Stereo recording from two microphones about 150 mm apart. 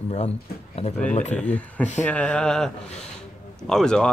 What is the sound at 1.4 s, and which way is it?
Speech, 10° left (ahead or behind).